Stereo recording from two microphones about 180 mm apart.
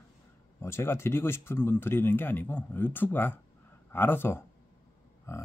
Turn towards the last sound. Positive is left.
turn(degrees=15)  # may be behind; listen again after turning